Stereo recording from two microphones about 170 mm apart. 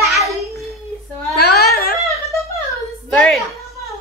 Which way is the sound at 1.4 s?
65° left (ahead or behind).